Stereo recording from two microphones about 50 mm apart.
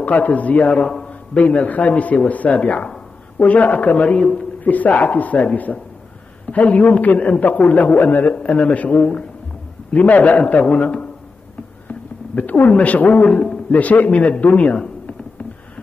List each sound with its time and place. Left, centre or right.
0.0 s a man's voice: left
4.2 s a man's voice: centre
4.6 s a man's voice: left
8.3 s a man's voice: left